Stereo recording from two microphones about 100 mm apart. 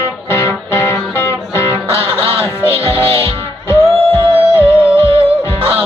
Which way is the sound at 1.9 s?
75° right (ahead or behind).